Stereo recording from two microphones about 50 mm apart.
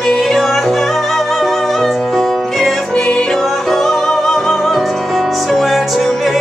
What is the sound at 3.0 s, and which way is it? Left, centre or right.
Music, centre.